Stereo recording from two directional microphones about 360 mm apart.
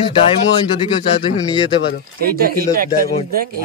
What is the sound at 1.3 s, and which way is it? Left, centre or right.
Speech, centre.